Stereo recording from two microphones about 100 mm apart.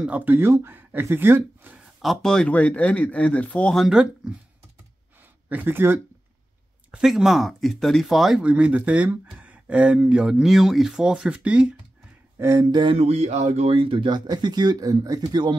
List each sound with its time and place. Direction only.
0.0 s speech: 15° right (ahead or behind)
2.0 s speech: centre (ahead or behind)
3.8 s speech: 5° right (ahead or behind)
5.5 s speech: 20° right (ahead or behind)
6.9 s speech: 5° right (ahead or behind)
8.4 s speech: 10° right (ahead or behind)
12.4 s speech: 30° right (ahead or behind)
12.9 s speech: 90° right; by 15.5 s 45° right (ahead or behind)